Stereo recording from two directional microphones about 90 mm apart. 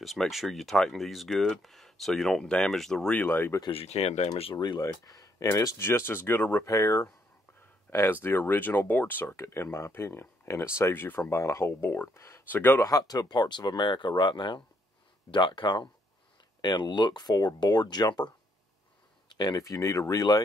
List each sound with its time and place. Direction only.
0.0 s speech: centre (ahead or behind)
3.2 s speech: 25° left (ahead or behind)
3.9 s speech: 90° left
4.6 s speech: 45° left (ahead or behind)
5.8 s speech: 25° left (ahead or behind)
6.7 s speech: 35° left (ahead or behind)
7.9 s speech: 25° left (ahead or behind)
12.4 s speech: 25° left (ahead or behind)
12.8 s speech: 45° left (ahead or behind)